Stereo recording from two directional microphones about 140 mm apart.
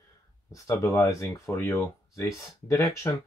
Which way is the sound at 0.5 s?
20° left (ahead or behind).